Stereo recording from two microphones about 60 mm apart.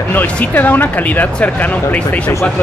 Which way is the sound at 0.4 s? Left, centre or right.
Left.